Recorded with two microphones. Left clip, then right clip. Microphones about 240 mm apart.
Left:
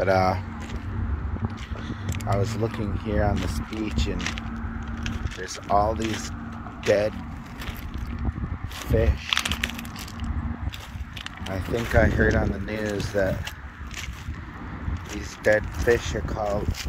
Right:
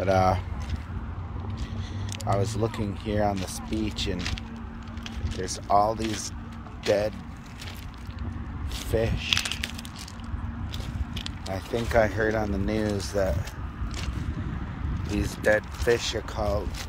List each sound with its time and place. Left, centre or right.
0.0 s speech: centre
2.3 s speech: centre
5.4 s speech: centre
8.9 s speech: centre
11.4 s speech: centre
15.1 s speech: centre